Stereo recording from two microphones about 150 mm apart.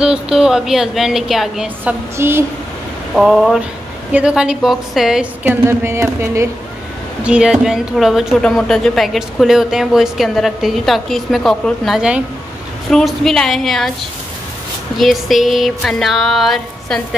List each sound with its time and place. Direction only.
0.0 s speech: 5° right (ahead or behind)
2.1 s a woman's voice: 15° right (ahead or behind)
3.2 s a woman's voice: centre (ahead or behind); by 6.5 s 20° right (ahead or behind)
7.2 s speech: 5° right (ahead or behind)
15.0 s speech: centre (ahead or behind)